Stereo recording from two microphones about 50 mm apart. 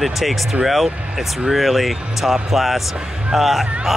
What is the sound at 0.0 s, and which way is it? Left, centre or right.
Speech, centre.